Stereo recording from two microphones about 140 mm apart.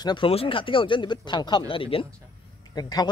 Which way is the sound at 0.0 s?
30° left (ahead or behind).